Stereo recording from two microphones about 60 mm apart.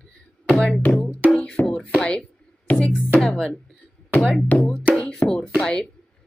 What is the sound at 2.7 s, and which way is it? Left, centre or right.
Speech, centre.